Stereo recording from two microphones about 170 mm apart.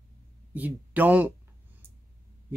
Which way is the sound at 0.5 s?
10° right (ahead or behind).